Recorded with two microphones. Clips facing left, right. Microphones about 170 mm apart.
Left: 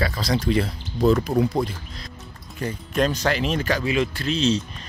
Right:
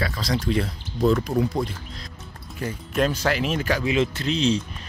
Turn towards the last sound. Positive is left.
turn(degrees=-15)  # may be behind; listen again after turning